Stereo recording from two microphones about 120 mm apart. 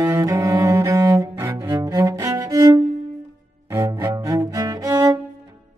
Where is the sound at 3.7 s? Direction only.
20° right (ahead or behind).